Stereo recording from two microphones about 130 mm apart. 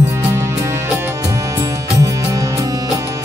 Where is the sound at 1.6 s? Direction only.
25° right (ahead or behind).